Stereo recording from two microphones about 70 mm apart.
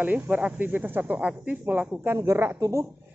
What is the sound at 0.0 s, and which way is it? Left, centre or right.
Speech, right.